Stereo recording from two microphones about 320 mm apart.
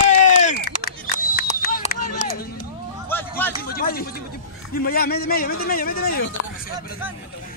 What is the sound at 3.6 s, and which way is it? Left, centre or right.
A man's voice, left.